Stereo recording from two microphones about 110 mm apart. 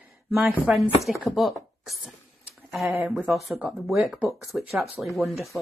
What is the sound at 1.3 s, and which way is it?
Speech, centre (ahead or behind).